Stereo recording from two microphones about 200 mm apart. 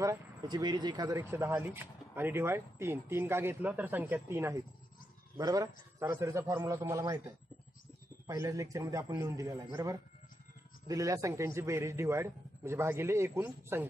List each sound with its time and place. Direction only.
0.0 s speech: 15° right (ahead or behind)